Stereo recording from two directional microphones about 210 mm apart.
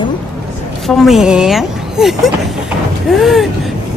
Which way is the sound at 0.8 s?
Centre (ahead or behind).